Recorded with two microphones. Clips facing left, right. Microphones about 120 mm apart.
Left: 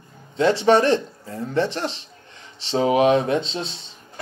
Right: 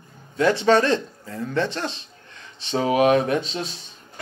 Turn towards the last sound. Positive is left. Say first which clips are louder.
# left 1 dB
turn(degrees=25)  # may be behind; listen again after turning